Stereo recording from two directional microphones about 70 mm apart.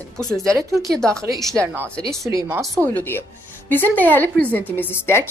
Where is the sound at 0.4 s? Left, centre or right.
Right.